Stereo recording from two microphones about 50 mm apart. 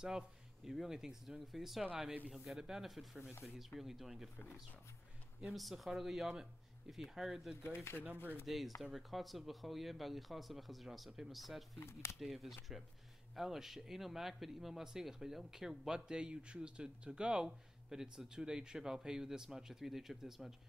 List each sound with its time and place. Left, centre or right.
0.7 s speech: centre
5.4 s speech: centre
7.6 s speech: left
8.5 s speech: centre
11.8 s speech: left
12.2 s speech: centre